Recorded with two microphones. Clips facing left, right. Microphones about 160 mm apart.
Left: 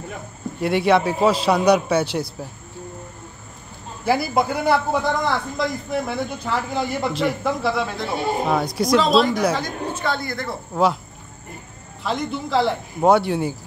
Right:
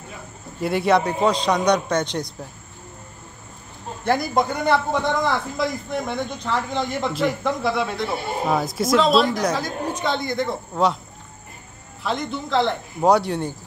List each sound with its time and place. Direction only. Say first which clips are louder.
0.6 s a man's voice: left 1 dB; centre (ahead or behind)
4.0 s a man's voice: left 1 dB; 5° left (ahead or behind)
9.9 s speech: right 3 dB; 20° right (ahead or behind)
10.7 s a man's voice: left 3 dB; 5° left (ahead or behind)
12.0 s a man's voice: left 1 dB; centre (ahead or behind)